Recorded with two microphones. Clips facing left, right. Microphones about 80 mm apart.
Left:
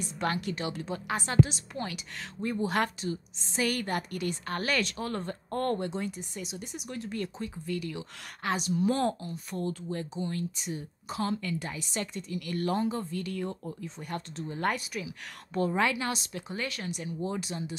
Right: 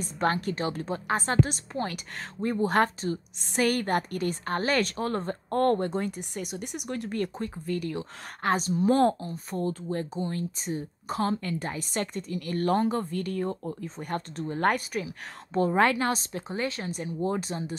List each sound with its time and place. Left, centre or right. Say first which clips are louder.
0.0 s speech: right 4 dB; right
3.3 s a woman's voice: right 5 dB; right